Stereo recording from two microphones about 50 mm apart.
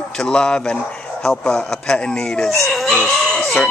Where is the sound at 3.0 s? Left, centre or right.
Centre.